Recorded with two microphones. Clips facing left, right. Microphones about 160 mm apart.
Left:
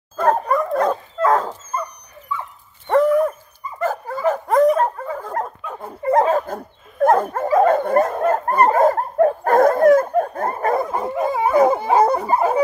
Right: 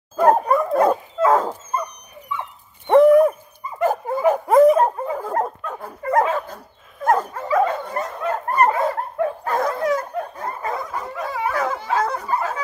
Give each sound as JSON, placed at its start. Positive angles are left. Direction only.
{"t": 0.2, "sound": "dog", "side_deg": -10}
{"t": 2.9, "sound": "owl", "side_deg": -15}
{"t": 3.8, "sound": "dog", "side_deg": -15}
{"t": 4.7, "sound": "dog", "side_deg": -15}
{"t": 5.2, "sound": "dog", "side_deg": -5}
{"t": 5.8, "sound": "dog", "side_deg": 25}
{"t": 6.2, "sound": "dog", "side_deg": 45}